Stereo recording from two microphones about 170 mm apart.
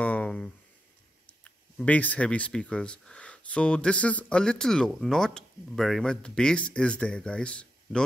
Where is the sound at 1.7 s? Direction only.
10° left (ahead or behind).